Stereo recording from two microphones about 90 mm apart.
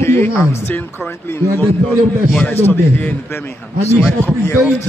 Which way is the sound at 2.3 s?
15° left (ahead or behind).